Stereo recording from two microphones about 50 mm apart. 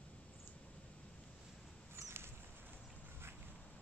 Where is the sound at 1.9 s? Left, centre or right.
Right.